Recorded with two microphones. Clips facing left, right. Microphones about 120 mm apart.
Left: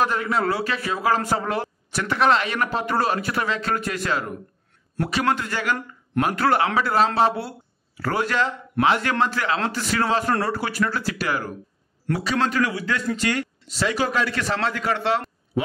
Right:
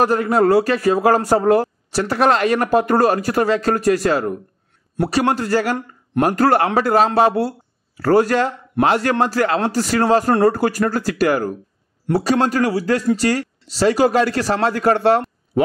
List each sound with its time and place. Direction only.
0.0 s a man's voice: 40° right (ahead or behind)